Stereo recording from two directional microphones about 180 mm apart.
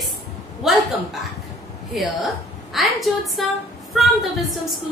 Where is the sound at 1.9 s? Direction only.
Centre (ahead or behind).